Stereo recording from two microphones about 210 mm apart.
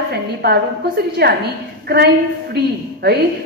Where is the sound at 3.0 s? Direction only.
50° right (ahead or behind).